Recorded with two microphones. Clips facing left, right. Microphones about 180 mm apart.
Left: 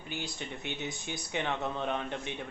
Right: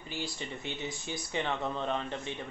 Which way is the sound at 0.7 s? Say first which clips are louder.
Even; centre (ahead or behind).